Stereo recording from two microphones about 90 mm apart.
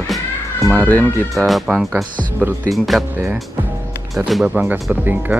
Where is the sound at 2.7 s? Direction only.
Centre (ahead or behind).